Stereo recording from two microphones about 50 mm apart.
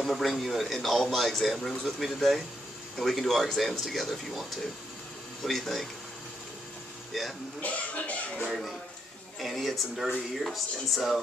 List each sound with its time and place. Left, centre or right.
0.0 s speech: centre
7.1 s speech: centre
7.6 s speech: left
8.5 s speech: centre